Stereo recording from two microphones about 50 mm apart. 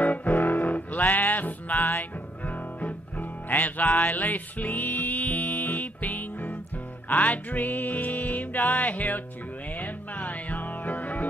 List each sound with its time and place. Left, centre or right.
0.0 s music: left